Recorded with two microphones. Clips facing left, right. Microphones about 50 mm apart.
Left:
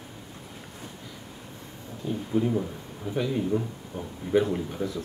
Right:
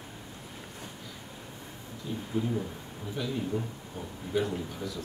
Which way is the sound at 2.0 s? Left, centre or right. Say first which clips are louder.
Left 6 dB; left.